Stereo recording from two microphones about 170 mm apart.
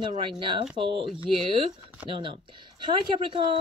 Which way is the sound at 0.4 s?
30° right (ahead or behind).